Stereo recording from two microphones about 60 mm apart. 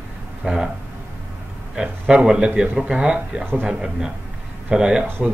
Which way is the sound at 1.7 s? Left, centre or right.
Centre.